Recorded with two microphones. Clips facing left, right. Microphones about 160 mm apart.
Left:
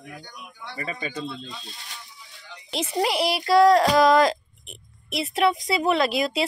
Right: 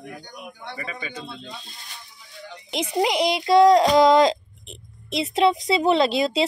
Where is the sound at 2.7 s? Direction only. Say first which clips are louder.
Right 2 dB; 15° right (ahead or behind).